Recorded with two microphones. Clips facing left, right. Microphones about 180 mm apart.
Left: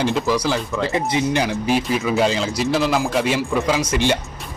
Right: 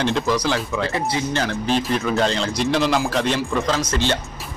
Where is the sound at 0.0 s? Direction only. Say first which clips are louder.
Left 1 dB; 5° left (ahead or behind).